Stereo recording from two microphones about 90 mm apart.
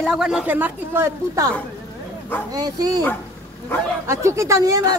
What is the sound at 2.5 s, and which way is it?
Speech, 45° right (ahead or behind).